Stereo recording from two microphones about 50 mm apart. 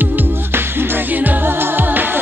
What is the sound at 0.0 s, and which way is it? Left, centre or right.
Music, right.